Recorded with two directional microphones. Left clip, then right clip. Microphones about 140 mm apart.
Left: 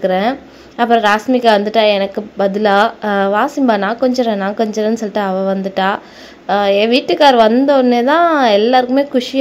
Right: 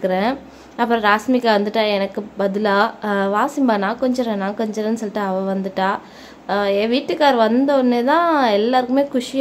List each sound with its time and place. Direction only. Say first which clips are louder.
0.0 s a woman's voice: left 5 dB; 10° left (ahead or behind)